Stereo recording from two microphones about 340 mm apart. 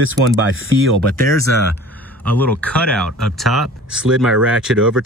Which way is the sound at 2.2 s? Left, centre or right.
Centre.